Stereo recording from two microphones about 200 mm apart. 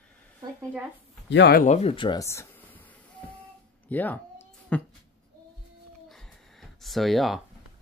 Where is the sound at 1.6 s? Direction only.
35° left (ahead or behind); by 2.8 s 10° left (ahead or behind).